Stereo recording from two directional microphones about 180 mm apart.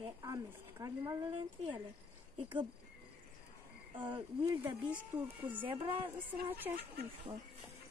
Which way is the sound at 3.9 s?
25° right (ahead or behind).